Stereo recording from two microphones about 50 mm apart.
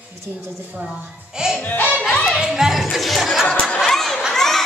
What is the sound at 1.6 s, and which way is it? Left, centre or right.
Music, left.